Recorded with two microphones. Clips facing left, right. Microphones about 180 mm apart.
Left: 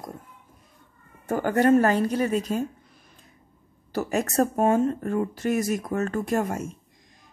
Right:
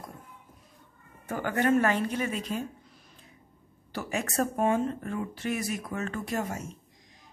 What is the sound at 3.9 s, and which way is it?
Speech, 40° left (ahead or behind).